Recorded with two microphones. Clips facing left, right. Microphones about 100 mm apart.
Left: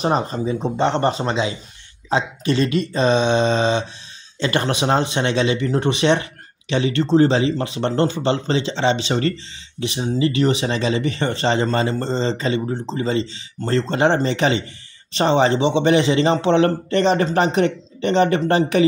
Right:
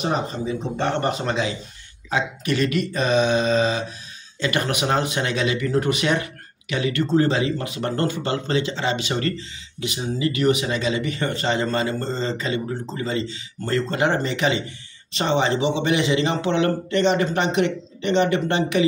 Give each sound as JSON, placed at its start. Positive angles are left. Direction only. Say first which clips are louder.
{"t": 0.0, "sound": "speech", "louder": "left 4 dB", "side_deg": 35}
{"t": 0.7, "sound": "speech", "louder": "left 4 dB", "side_deg": 25}